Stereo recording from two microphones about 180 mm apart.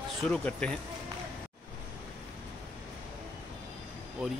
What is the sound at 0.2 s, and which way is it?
Speech, 5° left (ahead or behind).